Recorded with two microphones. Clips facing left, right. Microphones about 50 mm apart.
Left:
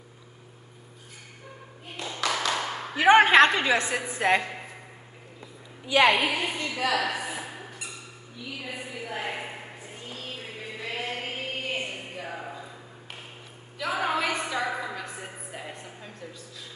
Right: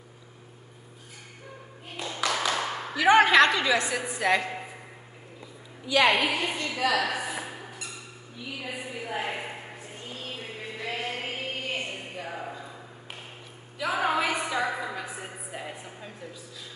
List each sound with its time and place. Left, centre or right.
2.0 s clapping: centre
2.9 s a woman's voice: left
6.0 s a woman's voice: centre
8.5 s a sound: centre
10.0 s chant: centre
13.7 s a sound: centre